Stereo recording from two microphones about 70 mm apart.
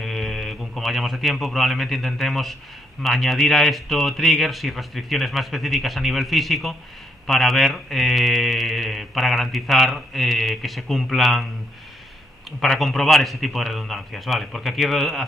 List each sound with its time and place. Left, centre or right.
0.0 s speech: centre
12.4 s speech: centre